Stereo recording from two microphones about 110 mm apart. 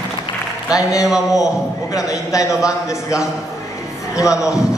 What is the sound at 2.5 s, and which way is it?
Speech, 5° right (ahead or behind).